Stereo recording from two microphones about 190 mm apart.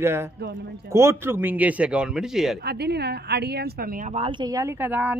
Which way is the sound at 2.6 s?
60° right (ahead or behind).